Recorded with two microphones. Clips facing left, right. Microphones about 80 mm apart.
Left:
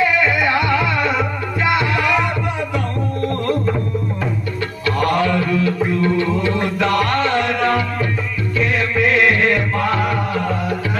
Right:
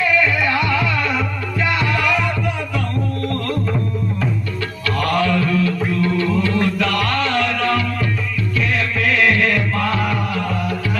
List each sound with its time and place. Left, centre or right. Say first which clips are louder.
0.0 s music: left 1 dB; left
5.0 s music: even; centre